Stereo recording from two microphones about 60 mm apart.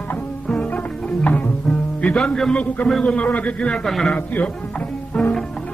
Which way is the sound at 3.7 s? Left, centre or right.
Centre.